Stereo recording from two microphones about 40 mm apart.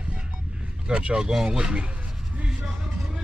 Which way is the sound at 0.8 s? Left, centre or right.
Right.